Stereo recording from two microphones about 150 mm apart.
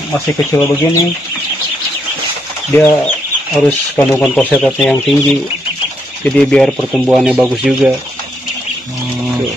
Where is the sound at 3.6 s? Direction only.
5° left (ahead or behind).